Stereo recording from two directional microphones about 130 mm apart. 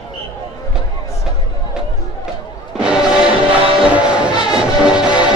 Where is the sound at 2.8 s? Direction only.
5° right (ahead or behind).